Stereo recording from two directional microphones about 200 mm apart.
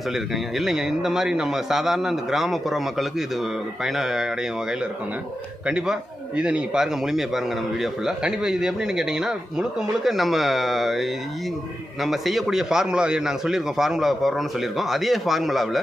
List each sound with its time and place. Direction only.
0.1 s a man's voice: centre (ahead or behind)